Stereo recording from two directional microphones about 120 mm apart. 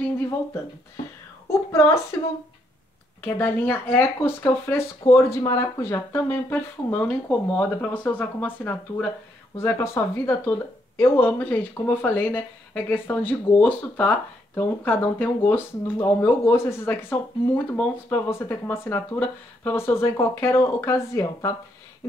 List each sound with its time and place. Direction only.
3.2 s speech: 20° left (ahead or behind)